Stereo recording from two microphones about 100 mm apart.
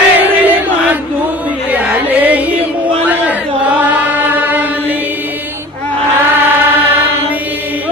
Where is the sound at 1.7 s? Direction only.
15° right (ahead or behind).